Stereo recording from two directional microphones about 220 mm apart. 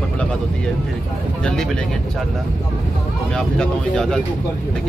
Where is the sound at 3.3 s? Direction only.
5° left (ahead or behind).